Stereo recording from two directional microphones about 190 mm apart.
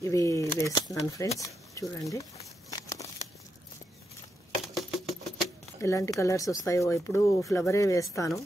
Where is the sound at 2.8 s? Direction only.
15° left (ahead or behind).